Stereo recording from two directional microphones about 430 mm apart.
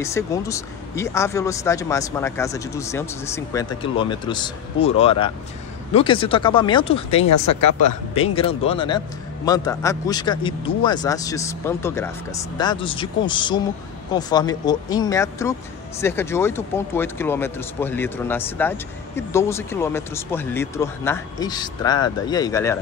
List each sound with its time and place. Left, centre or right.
0.0 s speech: centre
7.2 s speech: left
8.1 s speech: centre